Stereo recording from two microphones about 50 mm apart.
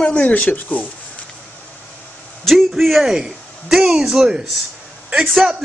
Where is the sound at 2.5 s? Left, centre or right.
Centre.